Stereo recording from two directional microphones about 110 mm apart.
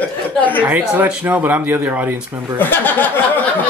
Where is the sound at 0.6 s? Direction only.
15° right (ahead or behind).